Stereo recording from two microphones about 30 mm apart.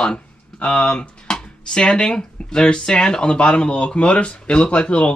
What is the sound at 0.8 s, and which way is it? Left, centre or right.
Speech, left.